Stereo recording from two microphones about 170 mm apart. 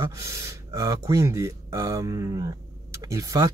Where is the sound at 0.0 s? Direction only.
15° right (ahead or behind).